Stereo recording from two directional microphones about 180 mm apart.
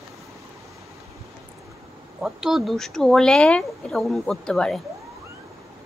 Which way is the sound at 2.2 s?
5° right (ahead or behind).